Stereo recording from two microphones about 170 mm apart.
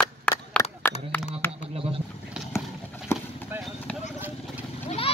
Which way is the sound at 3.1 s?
15° left (ahead or behind).